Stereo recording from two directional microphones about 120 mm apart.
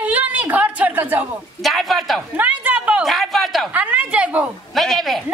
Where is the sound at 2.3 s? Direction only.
10° right (ahead or behind).